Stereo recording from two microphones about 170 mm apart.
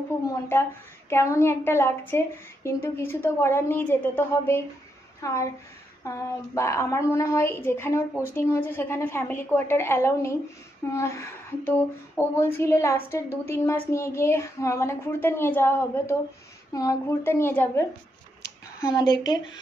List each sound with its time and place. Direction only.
1.1 s a woman's voice: 15° left (ahead or behind)